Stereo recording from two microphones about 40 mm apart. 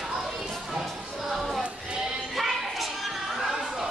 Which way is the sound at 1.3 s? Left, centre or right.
Centre.